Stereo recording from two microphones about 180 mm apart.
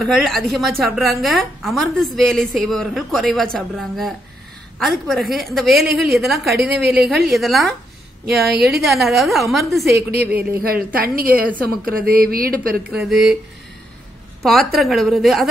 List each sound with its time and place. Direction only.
0.0 s a woman's voice: centre (ahead or behind)
8.5 s a woman's voice: 60° right (ahead or behind)
8.8 s a woman's voice: centre (ahead or behind)
10.6 s a woman's voice: 55° right (ahead or behind)
12.9 s a woman's voice: centre (ahead or behind)
14.4 s a woman's voice: centre (ahead or behind)